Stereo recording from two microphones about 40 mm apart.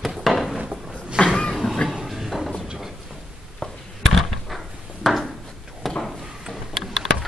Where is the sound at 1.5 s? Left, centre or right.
Centre.